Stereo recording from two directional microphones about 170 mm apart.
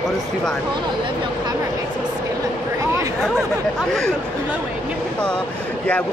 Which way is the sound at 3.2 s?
Centre (ahead or behind).